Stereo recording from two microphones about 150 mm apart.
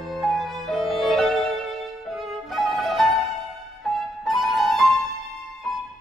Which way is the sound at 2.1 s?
Centre (ahead or behind).